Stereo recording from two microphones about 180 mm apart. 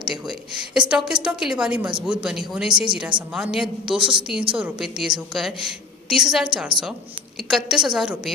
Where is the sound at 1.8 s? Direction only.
25° right (ahead or behind).